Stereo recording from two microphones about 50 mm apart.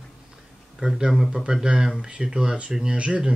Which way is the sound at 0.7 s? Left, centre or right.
Centre.